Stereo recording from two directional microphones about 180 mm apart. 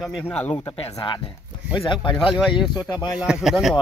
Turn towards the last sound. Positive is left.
turn(degrees=-5)  # may be behind; listen again after turning